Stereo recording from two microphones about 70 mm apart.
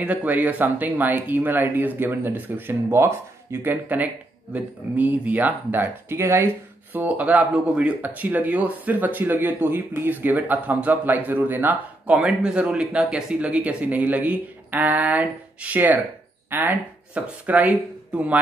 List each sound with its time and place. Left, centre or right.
0.0 s speech: right
3.6 s speech: right
12.1 s speech: centre; by 16.7 s right
17.1 s speech: centre